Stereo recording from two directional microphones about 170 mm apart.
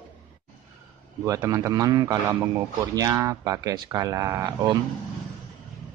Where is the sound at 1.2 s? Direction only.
20° right (ahead or behind).